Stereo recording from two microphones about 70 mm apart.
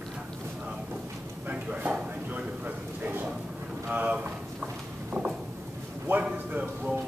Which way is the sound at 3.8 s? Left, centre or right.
Right.